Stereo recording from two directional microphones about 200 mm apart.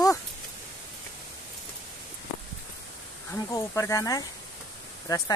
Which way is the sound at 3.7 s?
15° left (ahead or behind).